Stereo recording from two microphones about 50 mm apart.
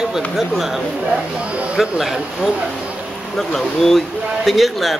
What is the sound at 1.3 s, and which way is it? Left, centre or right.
Speech, right.